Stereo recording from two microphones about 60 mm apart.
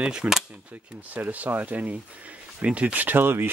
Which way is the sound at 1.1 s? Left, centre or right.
Right.